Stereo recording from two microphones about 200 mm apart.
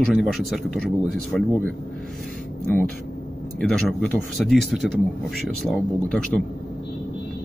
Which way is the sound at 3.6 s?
5° left (ahead or behind).